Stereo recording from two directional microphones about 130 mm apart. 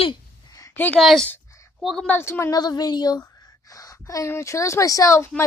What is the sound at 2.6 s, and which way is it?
Speech, 30° left (ahead or behind).